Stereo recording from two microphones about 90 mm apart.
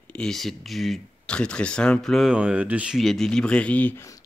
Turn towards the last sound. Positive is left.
turn(degrees=15)  # may be behind; listen again after turning